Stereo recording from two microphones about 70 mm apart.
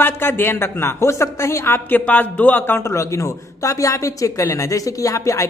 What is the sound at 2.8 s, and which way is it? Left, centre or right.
A man's voice, left.